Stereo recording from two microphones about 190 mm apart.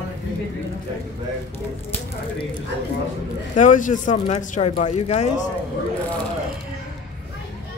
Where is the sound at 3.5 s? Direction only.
40° left (ahead or behind).